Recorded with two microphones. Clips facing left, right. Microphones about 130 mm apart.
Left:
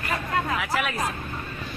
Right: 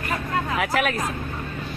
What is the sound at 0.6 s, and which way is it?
Speech, 55° right (ahead or behind).